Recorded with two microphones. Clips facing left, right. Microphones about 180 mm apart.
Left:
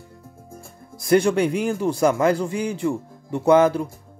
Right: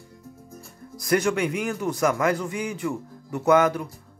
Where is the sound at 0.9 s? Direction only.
30° left (ahead or behind).